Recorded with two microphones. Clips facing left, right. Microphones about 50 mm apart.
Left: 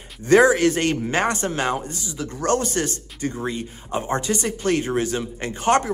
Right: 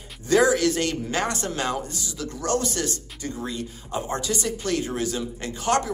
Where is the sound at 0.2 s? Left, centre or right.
Left.